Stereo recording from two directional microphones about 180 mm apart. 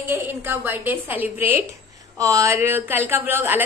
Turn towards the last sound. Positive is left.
turn(degrees=-10)  # may be behind; listen again after turning